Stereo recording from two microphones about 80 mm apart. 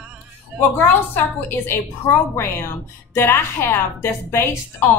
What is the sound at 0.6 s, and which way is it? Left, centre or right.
A woman's voice, left.